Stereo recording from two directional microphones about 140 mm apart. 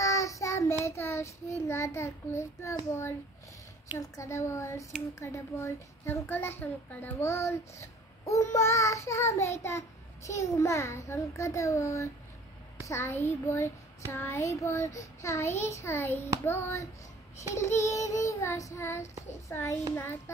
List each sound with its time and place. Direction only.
0.0 s child singing: 20° left (ahead or behind)
0.8 s a child's voice: 20° left (ahead or behind)
4.2 s a child's voice: 20° left (ahead or behind)